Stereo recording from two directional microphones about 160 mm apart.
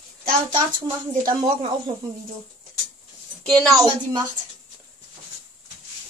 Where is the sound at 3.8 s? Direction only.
25° right (ahead or behind).